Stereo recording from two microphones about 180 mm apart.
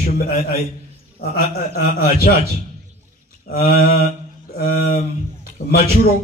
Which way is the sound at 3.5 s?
55° left (ahead or behind).